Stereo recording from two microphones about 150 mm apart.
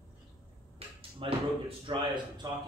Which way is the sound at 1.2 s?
35° right (ahead or behind).